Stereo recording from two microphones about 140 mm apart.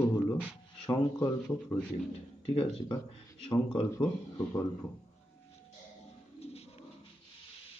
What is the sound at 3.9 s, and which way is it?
Speech, 20° left (ahead or behind).